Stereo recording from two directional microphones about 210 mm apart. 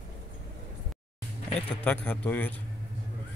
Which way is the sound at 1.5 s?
5° left (ahead or behind).